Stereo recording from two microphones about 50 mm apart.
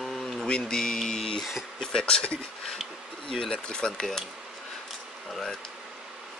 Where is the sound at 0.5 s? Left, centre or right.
Centre.